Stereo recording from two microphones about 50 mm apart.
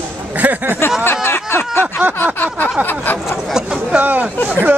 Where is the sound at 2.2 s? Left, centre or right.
Left.